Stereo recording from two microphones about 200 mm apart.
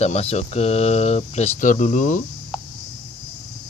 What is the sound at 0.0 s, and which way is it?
Speech, 30° left (ahead or behind).